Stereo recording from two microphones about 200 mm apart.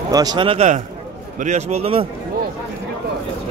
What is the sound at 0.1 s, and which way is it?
A man's voice, 20° right (ahead or behind).